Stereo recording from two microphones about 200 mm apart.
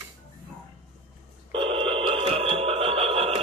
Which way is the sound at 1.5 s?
25° right (ahead or behind).